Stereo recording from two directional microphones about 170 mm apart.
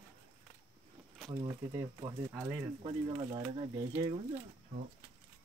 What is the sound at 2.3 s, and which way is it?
Speech, 10° right (ahead or behind).